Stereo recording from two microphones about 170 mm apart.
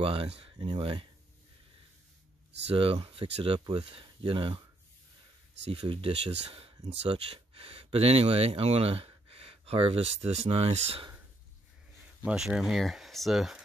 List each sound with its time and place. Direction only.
0.0 s speech: 35° right (ahead or behind)
2.7 s speech: 35° right (ahead or behind)
5.7 s speech: 30° right (ahead or behind)
12.3 s speech: 5° right (ahead or behind)